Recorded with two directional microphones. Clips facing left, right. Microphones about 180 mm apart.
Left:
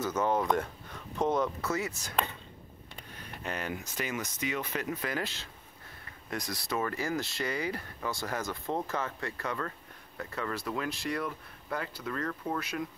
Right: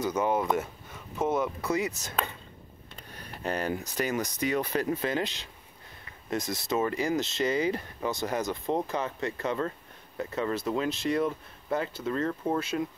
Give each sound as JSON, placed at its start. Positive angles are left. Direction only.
{"t": 0.0, "sound": "speech", "side_deg": -10}
{"t": 3.2, "sound": "speech", "side_deg": -35}